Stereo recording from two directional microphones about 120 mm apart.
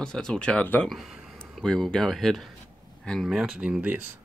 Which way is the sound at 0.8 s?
Centre (ahead or behind).